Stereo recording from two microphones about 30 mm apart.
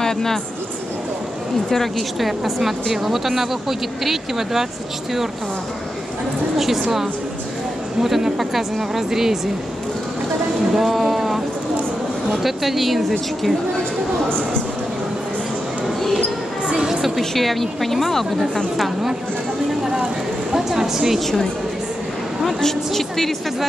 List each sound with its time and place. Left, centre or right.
0.0 s a sound: centre
1.7 s a woman's voice: centre
2.1 s speech: centre
6.5 s speech: centre
10.7 s music: centre
12.3 s speech: centre
17.2 s speech: centre
20.5 s speech: centre
22.4 s a woman's voice: centre